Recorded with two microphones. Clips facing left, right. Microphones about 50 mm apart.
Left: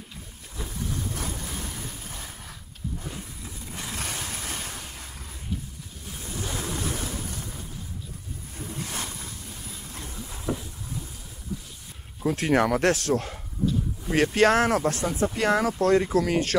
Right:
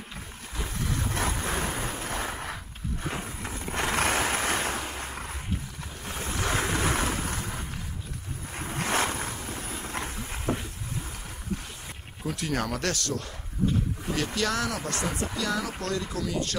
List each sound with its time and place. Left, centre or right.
0.8 s boat: right
6.0 s vehicle: right
12.2 s speech: left
14.1 s speech: left
14.9 s speech: right
15.3 s speech: left